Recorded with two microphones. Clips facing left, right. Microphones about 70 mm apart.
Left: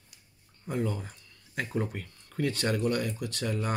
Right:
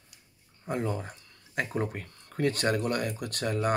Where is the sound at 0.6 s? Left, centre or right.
Right.